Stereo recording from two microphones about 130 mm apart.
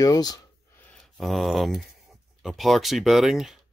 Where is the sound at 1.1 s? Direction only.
Centre (ahead or behind).